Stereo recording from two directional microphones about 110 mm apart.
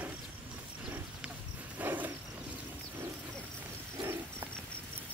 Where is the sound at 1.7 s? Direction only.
15° right (ahead or behind).